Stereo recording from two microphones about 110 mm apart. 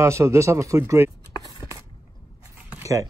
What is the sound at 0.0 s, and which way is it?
Speech, 25° right (ahead or behind).